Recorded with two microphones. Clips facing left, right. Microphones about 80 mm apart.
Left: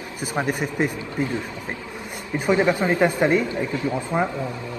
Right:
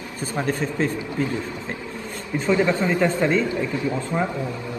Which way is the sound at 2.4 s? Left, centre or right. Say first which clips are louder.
Left 1 dB; centre.